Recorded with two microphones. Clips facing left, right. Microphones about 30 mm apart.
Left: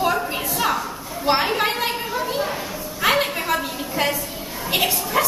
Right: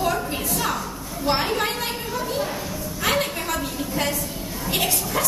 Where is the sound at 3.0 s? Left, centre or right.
Centre.